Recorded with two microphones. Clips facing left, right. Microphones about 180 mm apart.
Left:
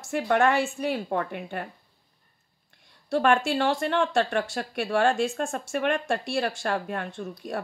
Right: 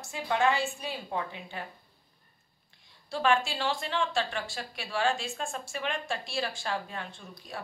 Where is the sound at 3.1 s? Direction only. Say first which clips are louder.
Left 5 dB; 60° left (ahead or behind).